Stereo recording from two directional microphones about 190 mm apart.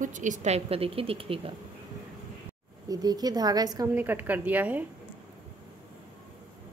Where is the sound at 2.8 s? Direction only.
20° right (ahead or behind).